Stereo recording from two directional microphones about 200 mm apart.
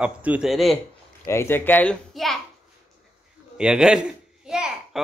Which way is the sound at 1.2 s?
10° left (ahead or behind).